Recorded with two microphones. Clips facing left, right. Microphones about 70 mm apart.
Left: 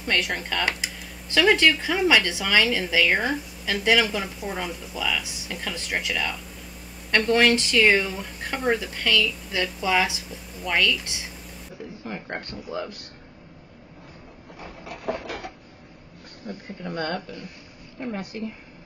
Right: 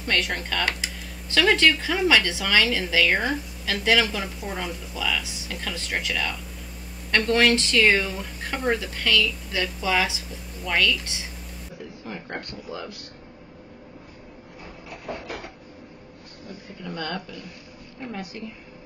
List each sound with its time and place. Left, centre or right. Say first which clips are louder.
0.0 s speech: even; centre
11.1 s a sound: even; centre
12.1 s speech: left 1 dB; left
15.1 s printer: left 5 dB; left
16.4 s speech: left 3 dB; left
16.9 s a woman's voice: left 2 dB; left